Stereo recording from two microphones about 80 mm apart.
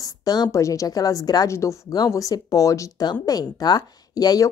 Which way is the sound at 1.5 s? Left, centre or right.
Left.